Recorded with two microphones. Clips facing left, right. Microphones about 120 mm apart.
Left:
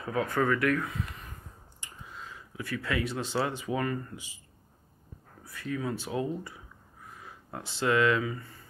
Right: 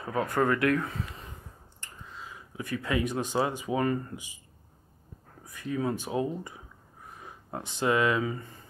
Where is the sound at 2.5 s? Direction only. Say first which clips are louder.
Right 2 dB; 20° right (ahead or behind).